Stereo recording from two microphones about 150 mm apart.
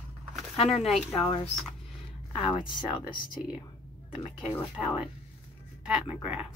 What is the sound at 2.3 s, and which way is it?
Speech, 40° left (ahead or behind).